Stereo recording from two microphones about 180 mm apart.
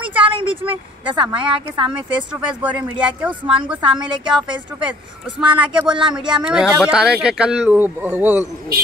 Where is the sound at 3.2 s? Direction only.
5° right (ahead or behind).